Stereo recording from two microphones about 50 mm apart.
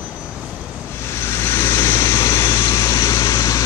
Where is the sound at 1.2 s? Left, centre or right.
Left.